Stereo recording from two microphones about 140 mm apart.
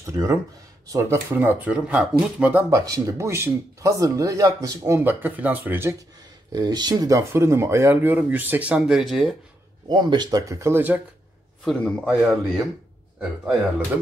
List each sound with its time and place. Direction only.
0.0 s speech: 20° right (ahead or behind); by 2.6 s 5° right (ahead or behind)
2.7 s speech: 25° right (ahead or behind)
6.5 s speech: 30° right (ahead or behind); by 9.4 s centre (ahead or behind)
9.8 s speech: 30° right (ahead or behind); by 11.0 s 15° right (ahead or behind)
11.6 s speech: 5° left (ahead or behind)